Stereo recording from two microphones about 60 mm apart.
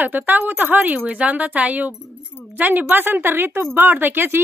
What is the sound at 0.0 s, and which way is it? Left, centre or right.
A woman's voice, right.